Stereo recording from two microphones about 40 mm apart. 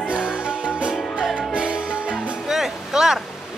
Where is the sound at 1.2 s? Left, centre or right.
Centre.